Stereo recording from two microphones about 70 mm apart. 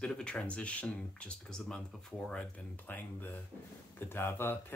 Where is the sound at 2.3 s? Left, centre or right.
Left.